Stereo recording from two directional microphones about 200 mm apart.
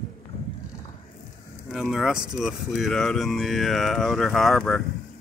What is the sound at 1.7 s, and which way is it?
Speech, centre (ahead or behind).